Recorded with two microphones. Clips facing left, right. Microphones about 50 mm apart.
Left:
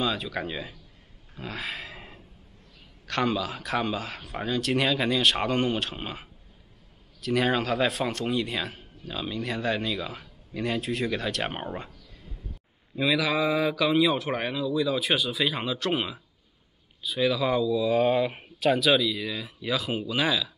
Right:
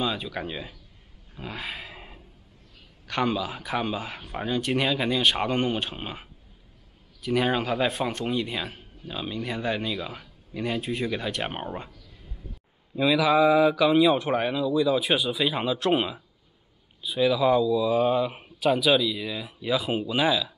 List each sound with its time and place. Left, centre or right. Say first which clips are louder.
0.0 s speech: even; centre
1.3 s dog: left 1 dB; centre
3.1 s speech: even; centre
4.7 s speech: left 1 dB; centre
7.2 s speech: even; centre
10.8 s speech: even; centre
11.4 s speech: even; centre
12.9 s speech: right 4 dB; centre
17.2 s speech: right 3 dB; centre